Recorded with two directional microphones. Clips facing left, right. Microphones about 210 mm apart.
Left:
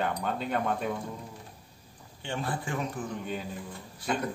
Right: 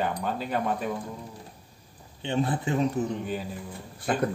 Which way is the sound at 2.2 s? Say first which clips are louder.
Right 6 dB; 20° right (ahead or behind).